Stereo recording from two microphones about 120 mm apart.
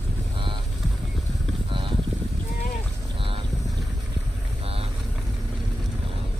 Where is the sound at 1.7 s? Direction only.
45° right (ahead or behind).